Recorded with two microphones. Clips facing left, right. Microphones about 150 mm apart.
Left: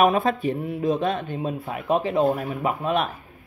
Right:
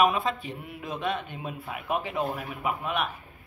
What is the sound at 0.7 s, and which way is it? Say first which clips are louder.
Speech: left 6 dB; 35° left (ahead or behind).